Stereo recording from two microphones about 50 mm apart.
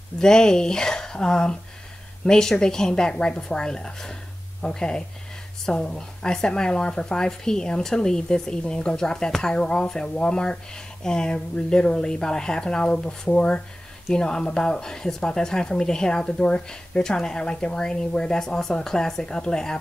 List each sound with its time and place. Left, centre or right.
0.2 s speech: centre